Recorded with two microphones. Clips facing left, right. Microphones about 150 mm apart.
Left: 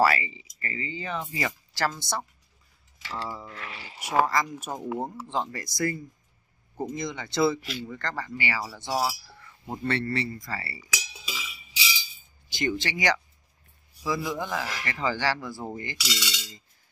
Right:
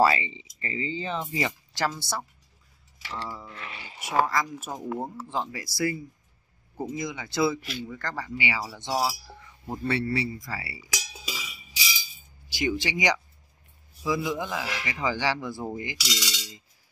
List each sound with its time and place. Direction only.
0.0 s speech: 25° right (ahead or behind); by 3.4 s 5° left (ahead or behind)
3.4 s speech: 20° right (ahead or behind)
4.0 s speech: centre (ahead or behind)
5.3 s speech: 5° right (ahead or behind)
11.2 s a sound: 40° right (ahead or behind)
12.4 s speech: 10° right (ahead or behind)